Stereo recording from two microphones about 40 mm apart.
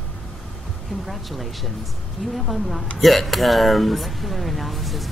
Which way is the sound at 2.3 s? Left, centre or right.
Centre.